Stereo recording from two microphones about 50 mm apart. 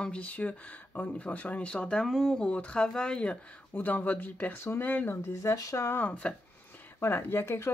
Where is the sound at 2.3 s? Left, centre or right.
Left.